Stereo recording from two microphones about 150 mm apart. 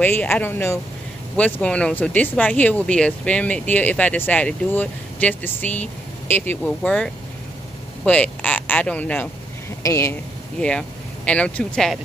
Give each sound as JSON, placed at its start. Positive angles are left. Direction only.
{"t": 0.0, "sound": "speech", "side_deg": 10}
{"t": 10.6, "sound": "speech", "side_deg": 5}